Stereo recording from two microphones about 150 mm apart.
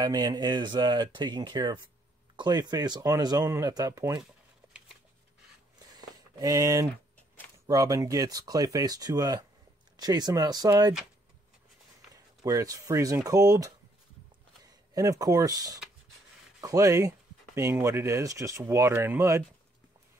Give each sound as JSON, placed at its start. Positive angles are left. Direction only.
{"t": 0.0, "sound": "speech", "side_deg": -25}
{"t": 5.9, "sound": "a sound", "side_deg": -25}
{"t": 7.6, "sound": "speech", "side_deg": -25}
{"t": 12.4, "sound": "speech", "side_deg": -20}
{"t": 15.0, "sound": "speech", "side_deg": -25}